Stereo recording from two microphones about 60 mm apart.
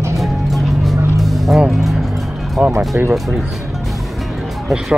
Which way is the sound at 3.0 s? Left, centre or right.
Right.